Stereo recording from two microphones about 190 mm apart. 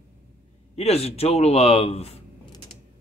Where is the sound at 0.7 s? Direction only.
30° left (ahead or behind).